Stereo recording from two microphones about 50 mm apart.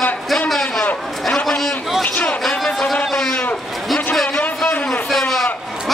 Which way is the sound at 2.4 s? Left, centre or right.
Centre.